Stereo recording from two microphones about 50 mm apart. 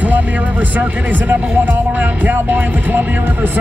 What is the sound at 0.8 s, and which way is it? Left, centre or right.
Music, right.